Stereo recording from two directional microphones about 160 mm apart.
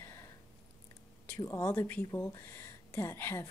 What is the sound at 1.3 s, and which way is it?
A woman's voice, 15° left (ahead or behind).